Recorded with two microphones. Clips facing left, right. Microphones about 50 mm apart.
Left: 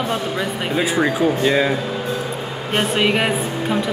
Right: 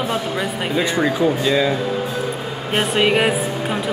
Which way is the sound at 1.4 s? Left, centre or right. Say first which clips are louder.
Left 2 dB; left.